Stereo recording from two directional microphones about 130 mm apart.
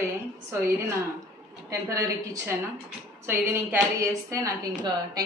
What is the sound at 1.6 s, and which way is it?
A woman's voice, 25° right (ahead or behind).